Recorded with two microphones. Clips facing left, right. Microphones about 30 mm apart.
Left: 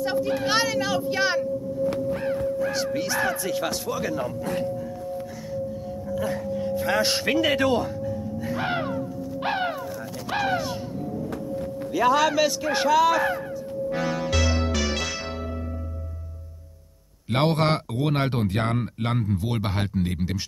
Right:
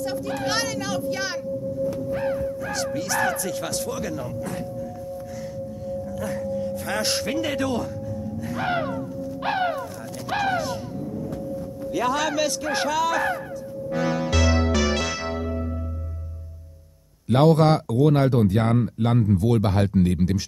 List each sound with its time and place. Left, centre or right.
0.0 s speech: centre
2.1 s crow: centre
2.7 s speech: centre
6.0 s music: centre
6.8 s speech: centre
8.5 s a sound: centre
11.9 s speech: centre
13.9 s music: centre
17.3 s speech: left
19.1 s speech: centre